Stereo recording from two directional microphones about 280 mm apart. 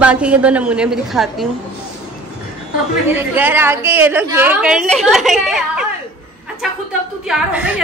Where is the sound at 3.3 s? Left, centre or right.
Centre.